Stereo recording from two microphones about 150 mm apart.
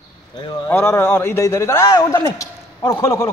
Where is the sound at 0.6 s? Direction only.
15° left (ahead or behind).